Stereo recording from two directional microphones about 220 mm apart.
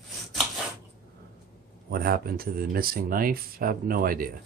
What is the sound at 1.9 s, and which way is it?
Speech, 45° right (ahead or behind).